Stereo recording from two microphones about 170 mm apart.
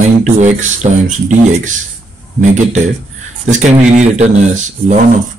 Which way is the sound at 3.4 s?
45° right (ahead or behind).